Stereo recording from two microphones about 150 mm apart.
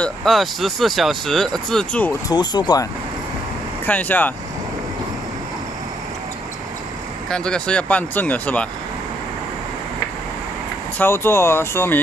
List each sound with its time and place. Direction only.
0.0 s speech: centre (ahead or behind)
2.2 s speech: 30° left (ahead or behind)
3.8 s speech: 10° left (ahead or behind)
7.2 s speech: 5° left (ahead or behind)
11.0 s speech: 15° left (ahead or behind)